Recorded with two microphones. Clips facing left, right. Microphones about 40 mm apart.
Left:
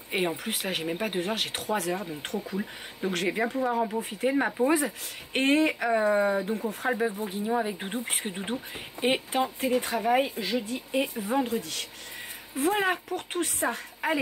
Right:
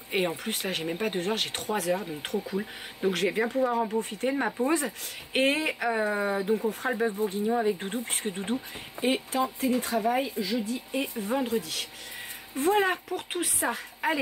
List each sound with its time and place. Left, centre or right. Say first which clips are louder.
0.1 s speech: even; centre
9.0 s speech: left 1 dB; left
10.4 s speech: even; left
11.1 s speech: even; centre